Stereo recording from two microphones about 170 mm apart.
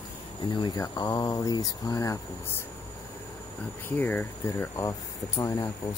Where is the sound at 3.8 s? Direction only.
10° left (ahead or behind).